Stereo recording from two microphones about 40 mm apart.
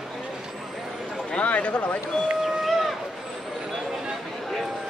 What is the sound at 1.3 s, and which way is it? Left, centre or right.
Speech, left.